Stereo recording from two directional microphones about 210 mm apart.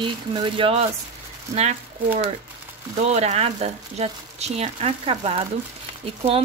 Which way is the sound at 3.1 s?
30° right (ahead or behind).